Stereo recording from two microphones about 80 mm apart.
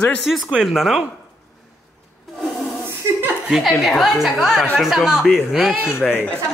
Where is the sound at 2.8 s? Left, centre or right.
Right.